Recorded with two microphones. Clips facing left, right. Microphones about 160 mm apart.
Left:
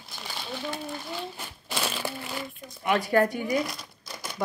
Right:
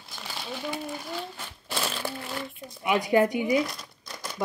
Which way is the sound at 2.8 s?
10° right (ahead or behind).